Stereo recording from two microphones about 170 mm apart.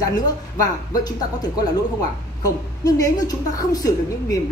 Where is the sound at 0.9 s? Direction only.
25° left (ahead or behind).